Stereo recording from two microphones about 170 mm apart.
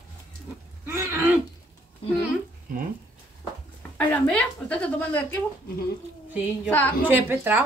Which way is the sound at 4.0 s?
10° left (ahead or behind).